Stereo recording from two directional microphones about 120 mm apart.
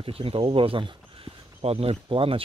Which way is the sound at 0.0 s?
50° right (ahead or behind).